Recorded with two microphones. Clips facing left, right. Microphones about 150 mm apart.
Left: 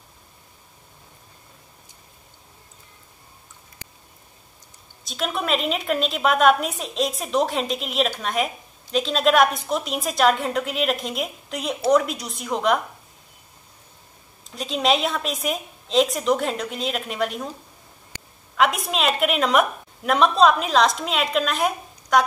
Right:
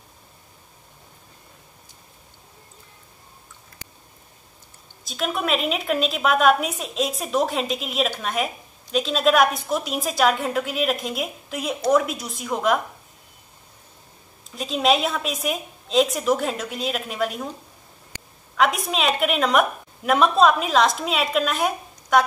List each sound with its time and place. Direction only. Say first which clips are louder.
5.0 s a woman's voice: right 1 dB; centre (ahead or behind)
14.5 s a woman's voice: right 1 dB; centre (ahead or behind)
18.6 s a woman's voice: even; centre (ahead or behind)